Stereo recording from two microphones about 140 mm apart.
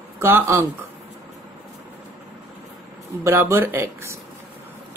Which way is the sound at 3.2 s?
20° right (ahead or behind).